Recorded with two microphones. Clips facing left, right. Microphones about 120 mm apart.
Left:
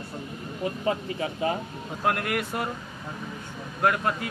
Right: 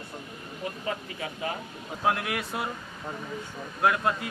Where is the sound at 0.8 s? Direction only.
30° left (ahead or behind).